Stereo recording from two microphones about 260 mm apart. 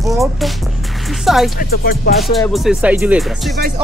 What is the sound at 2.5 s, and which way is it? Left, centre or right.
Speech, centre.